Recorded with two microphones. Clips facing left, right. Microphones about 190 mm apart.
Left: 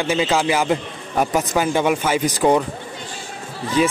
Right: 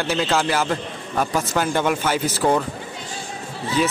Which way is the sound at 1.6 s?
5° left (ahead or behind).